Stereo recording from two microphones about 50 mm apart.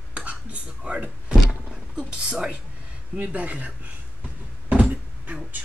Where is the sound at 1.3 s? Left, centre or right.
Centre.